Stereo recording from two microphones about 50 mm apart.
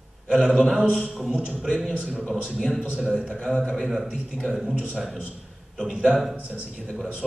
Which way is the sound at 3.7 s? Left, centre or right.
Centre.